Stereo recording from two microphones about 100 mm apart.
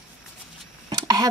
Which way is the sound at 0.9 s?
40° right (ahead or behind).